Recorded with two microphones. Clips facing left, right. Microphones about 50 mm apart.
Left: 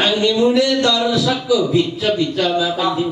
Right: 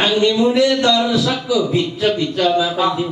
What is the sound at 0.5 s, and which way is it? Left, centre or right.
Speech, right.